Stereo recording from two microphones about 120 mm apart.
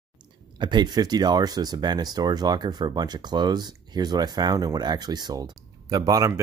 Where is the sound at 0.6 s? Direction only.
40° right (ahead or behind).